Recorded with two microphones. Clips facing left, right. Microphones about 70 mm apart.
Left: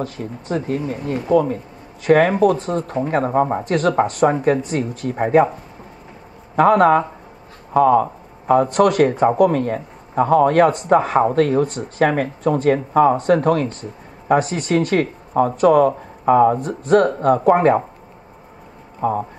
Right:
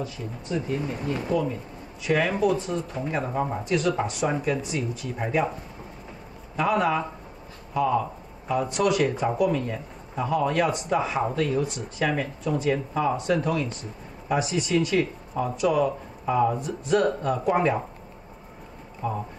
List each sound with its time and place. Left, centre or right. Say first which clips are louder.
0.0 s speech: left 6 dB; left
6.5 s speech: left 11 dB; left
18.9 s a man's voice: left 9 dB; left